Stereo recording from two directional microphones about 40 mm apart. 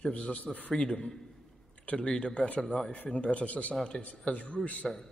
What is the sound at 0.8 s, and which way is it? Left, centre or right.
A man's voice, left.